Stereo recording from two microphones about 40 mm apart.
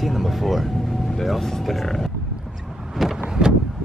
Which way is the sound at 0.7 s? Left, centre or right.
Centre.